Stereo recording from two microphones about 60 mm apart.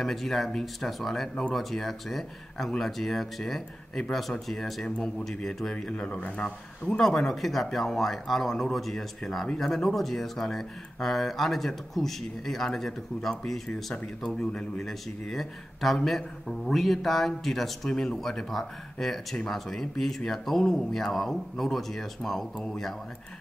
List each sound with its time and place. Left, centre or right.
0.0 s speech: centre
4.8 s speech: centre
6.0 s speech: left
7.0 s speech: centre